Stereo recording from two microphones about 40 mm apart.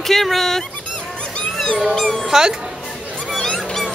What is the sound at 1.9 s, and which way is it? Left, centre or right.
Dog, centre.